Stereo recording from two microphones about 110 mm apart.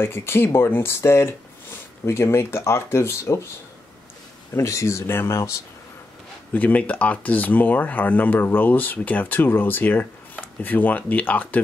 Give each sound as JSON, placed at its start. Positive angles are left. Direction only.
{"t": 0.0, "sound": "speech", "side_deg": 20}
{"t": 4.6, "sound": "speech", "side_deg": 25}
{"t": 6.5, "sound": "speech", "side_deg": 15}